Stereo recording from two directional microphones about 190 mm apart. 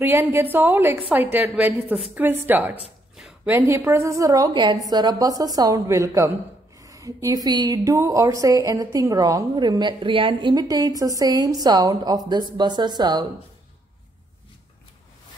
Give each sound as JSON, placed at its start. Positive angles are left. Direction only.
{"t": 0.0, "sound": "a woman's voice", "side_deg": -10}